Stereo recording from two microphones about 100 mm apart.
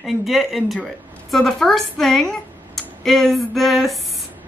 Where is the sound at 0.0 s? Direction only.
Centre (ahead or behind).